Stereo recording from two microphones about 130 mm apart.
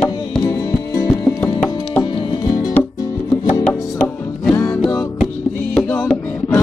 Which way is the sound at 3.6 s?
10° left (ahead or behind).